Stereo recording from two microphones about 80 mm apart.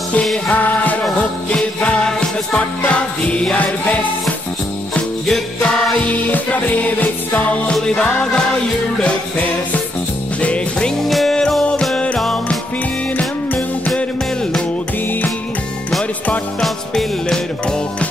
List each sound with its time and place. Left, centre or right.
0.5 s music: left
1.5 s jingle bell: centre
5.2 s music: centre
10.4 s music: centre
11.1 s music: centre
16.6 s music: centre